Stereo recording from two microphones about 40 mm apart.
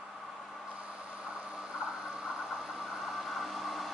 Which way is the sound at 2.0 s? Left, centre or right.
Centre.